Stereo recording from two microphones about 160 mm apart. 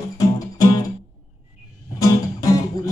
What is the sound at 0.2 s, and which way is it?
Music, 20° left (ahead or behind).